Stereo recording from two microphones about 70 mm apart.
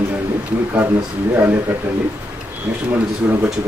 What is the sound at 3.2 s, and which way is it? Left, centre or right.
Speech, right.